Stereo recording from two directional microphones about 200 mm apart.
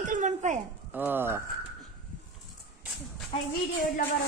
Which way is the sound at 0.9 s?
10° right (ahead or behind).